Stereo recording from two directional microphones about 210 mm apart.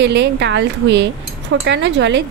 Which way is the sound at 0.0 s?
55° right (ahead or behind).